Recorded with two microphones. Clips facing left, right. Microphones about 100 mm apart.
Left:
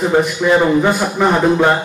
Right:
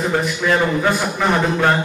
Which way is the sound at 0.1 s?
15° left (ahead or behind).